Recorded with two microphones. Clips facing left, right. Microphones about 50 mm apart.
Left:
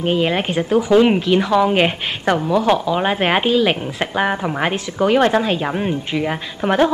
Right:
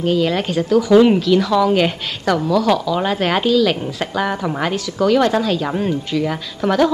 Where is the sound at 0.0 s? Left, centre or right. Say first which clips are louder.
Right 1 dB; left.